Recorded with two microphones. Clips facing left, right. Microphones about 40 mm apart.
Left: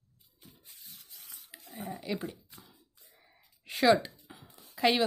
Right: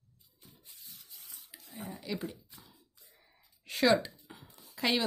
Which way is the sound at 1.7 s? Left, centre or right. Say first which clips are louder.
Left 3 dB; left.